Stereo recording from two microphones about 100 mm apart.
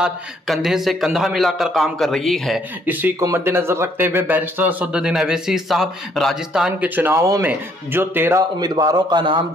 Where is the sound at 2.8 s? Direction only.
15° right (ahead or behind); by 6.6 s centre (ahead or behind).